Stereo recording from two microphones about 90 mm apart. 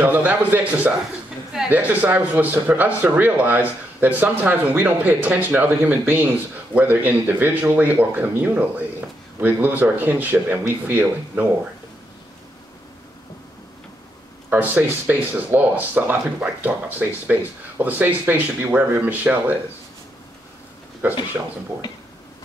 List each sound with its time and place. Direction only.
0.0 s speech: 20° right (ahead or behind)
14.5 s speech: 20° right (ahead or behind)
21.0 s speech: 20° right (ahead or behind)